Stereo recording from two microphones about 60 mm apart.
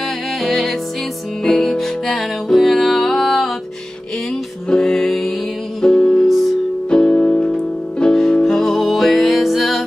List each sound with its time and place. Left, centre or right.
0.4 s music: centre
4.6 s music: centre
6.2 s music: centre
6.9 s music: centre